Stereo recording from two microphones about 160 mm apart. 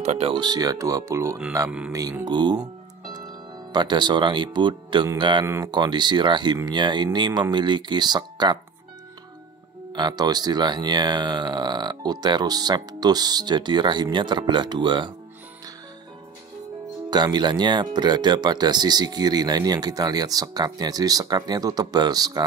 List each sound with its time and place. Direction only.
0.0 s speech: 45° right (ahead or behind)
0.3 s speech: 25° right (ahead or behind)
9.9 s speech: 25° right (ahead or behind)
17.1 s speech: 25° right (ahead or behind)